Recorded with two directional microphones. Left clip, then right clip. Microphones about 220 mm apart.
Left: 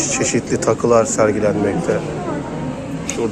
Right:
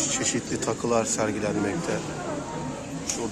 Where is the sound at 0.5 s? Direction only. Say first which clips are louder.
Left 12 dB; 20° right (ahead or behind).